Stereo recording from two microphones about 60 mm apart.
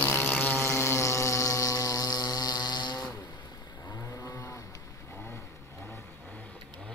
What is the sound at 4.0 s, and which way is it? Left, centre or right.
Cattle, left.